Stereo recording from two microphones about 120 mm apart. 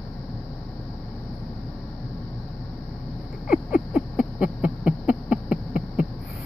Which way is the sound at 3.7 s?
10° right (ahead or behind).